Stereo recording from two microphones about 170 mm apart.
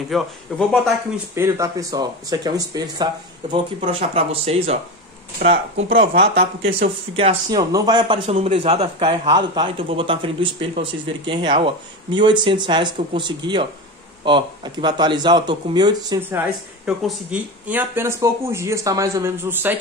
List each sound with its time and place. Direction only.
0.1 s speech: centre (ahead or behind)
1.3 s speech: 15° right (ahead or behind)
3.8 s speech: 35° right (ahead or behind)
5.4 s speech: 70° right (ahead or behind)
6.8 s speech: 35° right (ahead or behind)
16.2 s speech: 10° right (ahead or behind)